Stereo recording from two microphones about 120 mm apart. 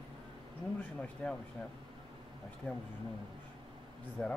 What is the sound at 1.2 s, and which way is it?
Speech, 15° left (ahead or behind).